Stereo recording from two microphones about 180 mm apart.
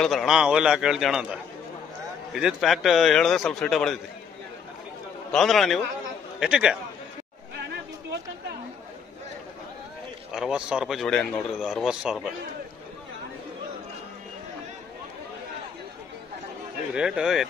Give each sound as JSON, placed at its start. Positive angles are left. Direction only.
{"t": 0.0, "sound": "a man's voice", "side_deg": 0}
{"t": 5.3, "sound": "a man's voice", "side_deg": 0}
{"t": 10.3, "sound": "a man's voice", "side_deg": -5}
{"t": 16.9, "sound": "a man's voice", "side_deg": -5}